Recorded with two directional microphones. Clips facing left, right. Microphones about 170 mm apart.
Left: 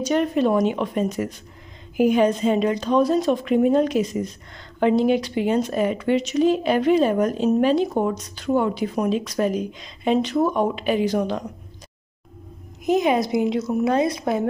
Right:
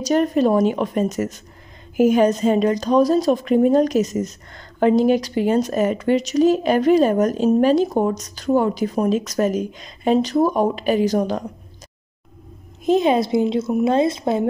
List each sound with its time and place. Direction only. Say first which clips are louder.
0.0 s a woman's voice: right 3 dB; 40° right (ahead or behind)
12.8 s a woman's voice: right 3 dB; 30° right (ahead or behind)